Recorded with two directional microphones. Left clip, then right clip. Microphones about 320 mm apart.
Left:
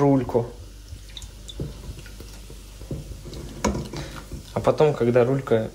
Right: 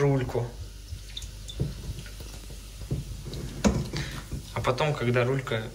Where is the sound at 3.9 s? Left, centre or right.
Centre.